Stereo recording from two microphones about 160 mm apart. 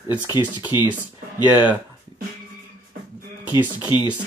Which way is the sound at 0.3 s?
25° left (ahead or behind).